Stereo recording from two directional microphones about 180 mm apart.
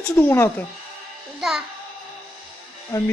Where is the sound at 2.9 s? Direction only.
20° left (ahead or behind).